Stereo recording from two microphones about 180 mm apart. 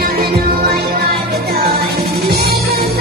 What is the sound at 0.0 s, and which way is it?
Music, 60° right (ahead or behind).